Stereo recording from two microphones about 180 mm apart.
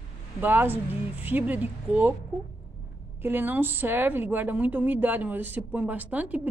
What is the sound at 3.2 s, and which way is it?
A woman's voice, 10° right (ahead or behind).